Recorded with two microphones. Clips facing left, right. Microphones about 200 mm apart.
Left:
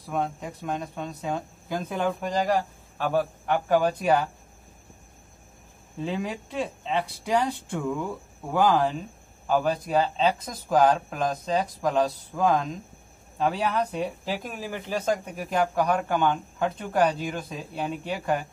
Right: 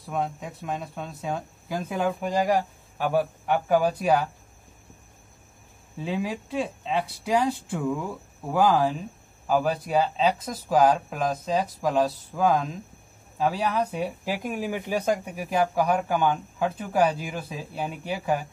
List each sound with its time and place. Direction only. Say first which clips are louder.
0.0 s speech: even; centre (ahead or behind)
5.9 s speech: right 1 dB; centre (ahead or behind)